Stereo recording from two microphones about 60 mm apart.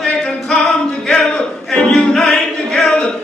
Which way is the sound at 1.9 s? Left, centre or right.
Centre.